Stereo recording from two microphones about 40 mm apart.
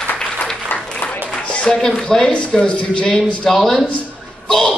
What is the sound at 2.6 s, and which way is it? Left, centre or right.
Speech, left.